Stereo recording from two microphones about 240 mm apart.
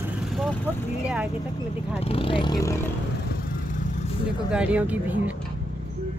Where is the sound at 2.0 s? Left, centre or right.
Left.